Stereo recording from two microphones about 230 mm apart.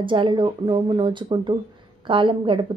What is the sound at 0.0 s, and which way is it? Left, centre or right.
Speech, right.